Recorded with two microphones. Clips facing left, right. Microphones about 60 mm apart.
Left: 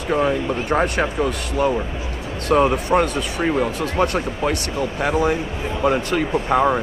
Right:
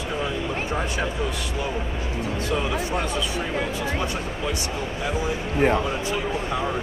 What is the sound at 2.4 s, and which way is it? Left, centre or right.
Speech, left.